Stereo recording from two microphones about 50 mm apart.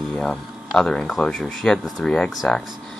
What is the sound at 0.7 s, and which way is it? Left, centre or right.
Speech, centre.